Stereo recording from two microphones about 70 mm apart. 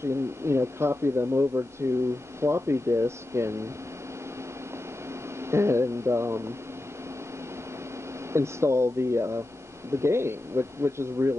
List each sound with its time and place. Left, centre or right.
0.0 s speech: right
5.5 s speech: right
8.3 s speech: right